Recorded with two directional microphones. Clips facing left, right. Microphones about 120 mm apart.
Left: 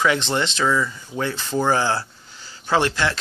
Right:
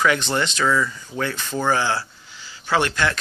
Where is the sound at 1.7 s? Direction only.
35° left (ahead or behind).